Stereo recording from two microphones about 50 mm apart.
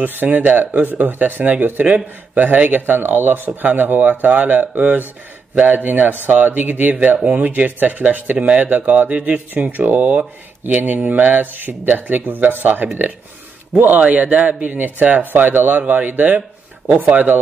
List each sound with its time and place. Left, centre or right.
0.0 s speech: right